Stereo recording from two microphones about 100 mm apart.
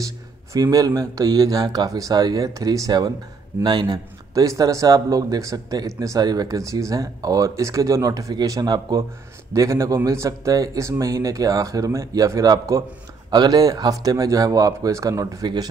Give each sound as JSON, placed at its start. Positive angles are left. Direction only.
{"t": 0.0, "sound": "a man's voice", "side_deg": -35}
{"t": 9.5, "sound": "a man's voice", "side_deg": -30}